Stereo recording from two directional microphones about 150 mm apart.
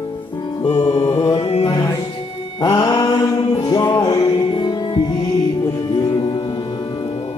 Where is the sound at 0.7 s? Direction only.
45° left (ahead or behind).